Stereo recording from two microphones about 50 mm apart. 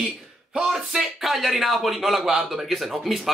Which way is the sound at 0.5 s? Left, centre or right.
Centre.